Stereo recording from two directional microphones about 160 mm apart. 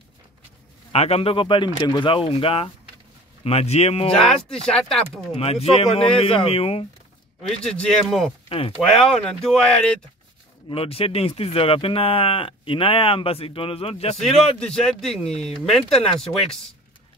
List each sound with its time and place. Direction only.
0.9 s speech: 40° left (ahead or behind)
4.3 s speech: 5° left (ahead or behind)
5.3 s speech: 40° left (ahead or behind)
7.4 s speech: 5° left (ahead or behind)
8.5 s speech: 35° left (ahead or behind)
8.7 s speech: 5° left (ahead or behind)
10.7 s speech: 35° left (ahead or behind)
14.2 s speech: centre (ahead or behind)